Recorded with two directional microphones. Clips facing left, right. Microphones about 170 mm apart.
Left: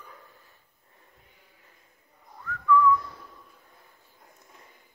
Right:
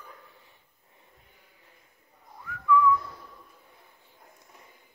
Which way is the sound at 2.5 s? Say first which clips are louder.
Left 4 dB; 15° right (ahead or behind).